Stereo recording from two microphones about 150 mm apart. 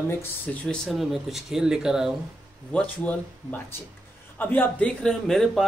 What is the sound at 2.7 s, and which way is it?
Speech, 10° left (ahead or behind).